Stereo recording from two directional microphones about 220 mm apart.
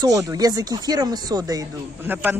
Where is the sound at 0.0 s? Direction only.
15° right (ahead or behind).